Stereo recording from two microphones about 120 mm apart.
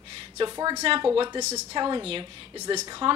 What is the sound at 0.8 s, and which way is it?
Speech, 50° right (ahead or behind).